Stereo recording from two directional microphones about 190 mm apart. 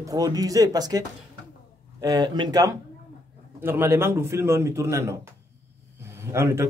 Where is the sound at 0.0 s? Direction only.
20° right (ahead or behind).